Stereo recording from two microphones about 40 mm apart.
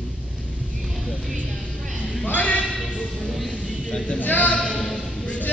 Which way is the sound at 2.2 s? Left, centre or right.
Left.